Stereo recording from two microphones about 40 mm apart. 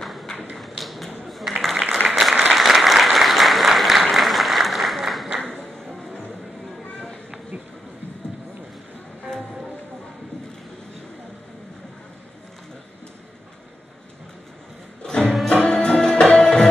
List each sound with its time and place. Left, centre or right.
0.0 s tap: centre
0.6 s a sound: centre
2.0 s applause: centre
15.0 s music: centre